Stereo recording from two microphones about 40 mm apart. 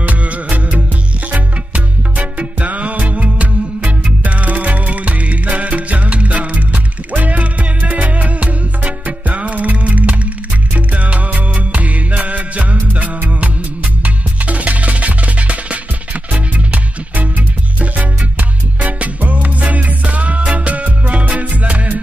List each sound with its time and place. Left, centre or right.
0.0 s music: right